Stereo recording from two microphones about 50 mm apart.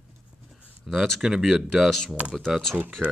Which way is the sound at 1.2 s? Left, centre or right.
Centre.